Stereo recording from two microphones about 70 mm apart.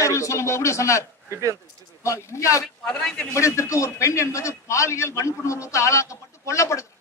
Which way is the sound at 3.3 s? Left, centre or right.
Left.